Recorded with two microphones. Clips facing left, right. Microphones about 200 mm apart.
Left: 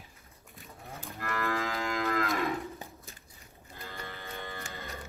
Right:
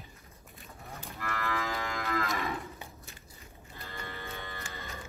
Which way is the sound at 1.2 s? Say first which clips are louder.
Left 2 dB; 50° left (ahead or behind).